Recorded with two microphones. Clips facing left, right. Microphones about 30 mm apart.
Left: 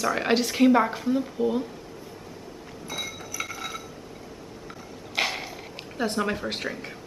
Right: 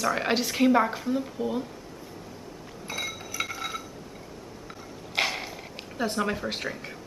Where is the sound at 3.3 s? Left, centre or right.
Centre.